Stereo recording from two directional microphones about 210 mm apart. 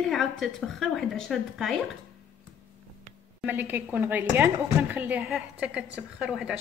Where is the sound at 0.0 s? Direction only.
Centre (ahead or behind).